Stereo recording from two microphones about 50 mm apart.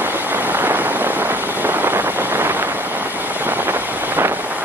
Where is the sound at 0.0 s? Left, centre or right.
Right.